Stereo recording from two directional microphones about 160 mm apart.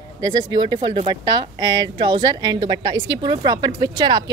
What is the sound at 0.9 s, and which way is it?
Speech, 40° right (ahead or behind).